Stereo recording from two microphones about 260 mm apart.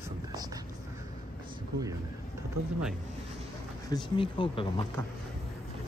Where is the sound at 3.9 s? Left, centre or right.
Centre.